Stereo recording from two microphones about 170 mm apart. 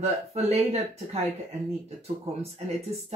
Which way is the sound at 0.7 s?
40° right (ahead or behind).